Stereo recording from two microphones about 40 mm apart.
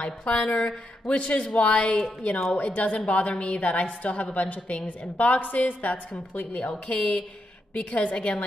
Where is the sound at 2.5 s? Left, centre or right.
Left.